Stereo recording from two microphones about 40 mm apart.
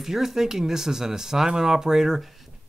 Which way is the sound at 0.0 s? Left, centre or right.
Centre.